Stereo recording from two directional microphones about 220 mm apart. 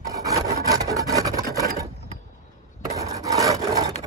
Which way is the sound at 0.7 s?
15° right (ahead or behind).